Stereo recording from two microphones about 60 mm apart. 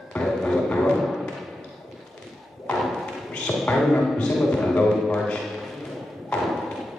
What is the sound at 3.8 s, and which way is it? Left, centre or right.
Speech, centre.